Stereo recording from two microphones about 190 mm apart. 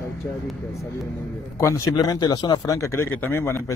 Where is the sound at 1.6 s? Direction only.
15° left (ahead or behind).